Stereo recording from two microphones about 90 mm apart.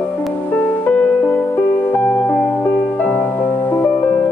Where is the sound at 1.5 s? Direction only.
25° left (ahead or behind).